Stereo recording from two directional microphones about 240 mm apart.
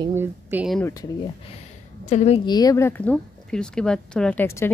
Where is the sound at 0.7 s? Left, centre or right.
Centre.